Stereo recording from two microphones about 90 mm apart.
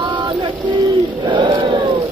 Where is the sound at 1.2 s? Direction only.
60° right (ahead or behind).